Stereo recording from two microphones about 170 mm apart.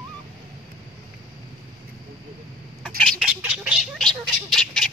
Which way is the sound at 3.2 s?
5° right (ahead or behind).